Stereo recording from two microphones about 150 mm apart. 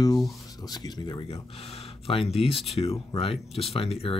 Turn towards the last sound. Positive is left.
turn(degrees=40)  # may be behind; listen again after turning